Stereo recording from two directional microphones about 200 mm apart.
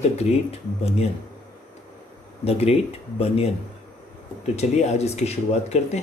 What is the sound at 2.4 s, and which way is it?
Speech, 30° left (ahead or behind).